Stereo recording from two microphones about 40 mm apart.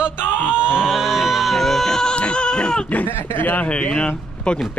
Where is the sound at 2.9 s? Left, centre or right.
Left.